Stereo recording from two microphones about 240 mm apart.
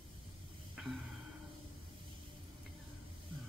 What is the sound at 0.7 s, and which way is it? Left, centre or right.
Music, centre.